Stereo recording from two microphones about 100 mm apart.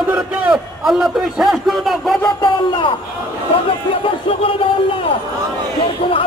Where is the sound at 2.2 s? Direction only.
50° left (ahead or behind).